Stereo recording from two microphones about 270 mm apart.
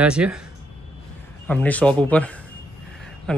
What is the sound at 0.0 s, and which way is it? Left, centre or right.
Speech, centre.